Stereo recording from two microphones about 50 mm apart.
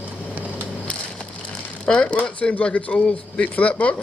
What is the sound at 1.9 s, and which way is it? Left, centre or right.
Speech, centre.